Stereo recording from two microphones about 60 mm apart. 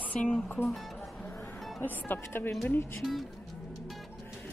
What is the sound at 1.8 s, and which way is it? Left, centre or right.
Speech, left.